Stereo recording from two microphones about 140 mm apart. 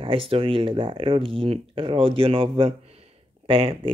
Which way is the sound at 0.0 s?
40° right (ahead or behind).